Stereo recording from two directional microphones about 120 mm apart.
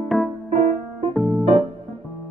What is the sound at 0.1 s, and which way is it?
Music, centre (ahead or behind).